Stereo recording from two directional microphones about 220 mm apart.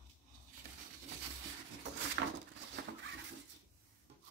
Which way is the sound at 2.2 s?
55° right (ahead or behind).